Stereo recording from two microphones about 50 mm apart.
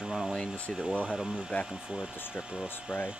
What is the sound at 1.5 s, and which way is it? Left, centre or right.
Speech, left.